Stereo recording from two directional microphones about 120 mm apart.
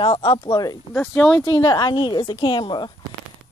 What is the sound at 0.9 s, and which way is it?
Speech, 15° left (ahead or behind).